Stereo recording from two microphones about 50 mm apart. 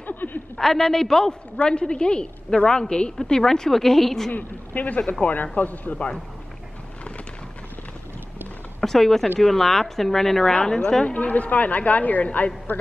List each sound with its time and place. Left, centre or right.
0.0 s a sound: left
0.6 s a woman's voice: centre
1.6 s a woman's voice: centre
4.3 s a woman's voice: left
8.8 s a woman's voice: centre
11.1 s a woman's voice: left